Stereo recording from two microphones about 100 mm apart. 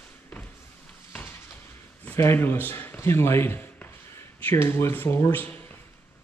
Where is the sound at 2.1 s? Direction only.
25° left (ahead or behind).